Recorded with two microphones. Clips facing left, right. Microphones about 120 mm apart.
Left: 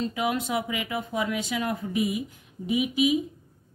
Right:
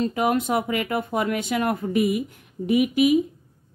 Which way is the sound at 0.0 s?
50° right (ahead or behind).